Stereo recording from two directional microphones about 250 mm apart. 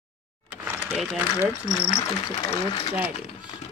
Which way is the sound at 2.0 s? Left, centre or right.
Centre.